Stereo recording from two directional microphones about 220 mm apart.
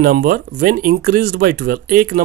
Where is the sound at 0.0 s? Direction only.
40° right (ahead or behind).